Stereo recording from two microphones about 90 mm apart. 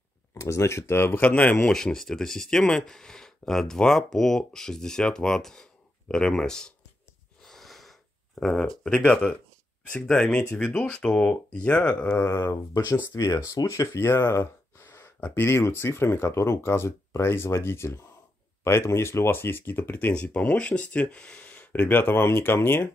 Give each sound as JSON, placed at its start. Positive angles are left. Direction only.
{"t": 0.3, "sound": "speech", "side_deg": 35}
{"t": 1.7, "sound": "speech", "side_deg": 5}
{"t": 7.4, "sound": "wheeze", "side_deg": 5}
{"t": 8.4, "sound": "speech", "side_deg": 5}
{"t": 12.1, "sound": "speech", "side_deg": 25}
{"t": 13.1, "sound": "speech", "side_deg": 40}
{"t": 14.1, "sound": "speech", "side_deg": 25}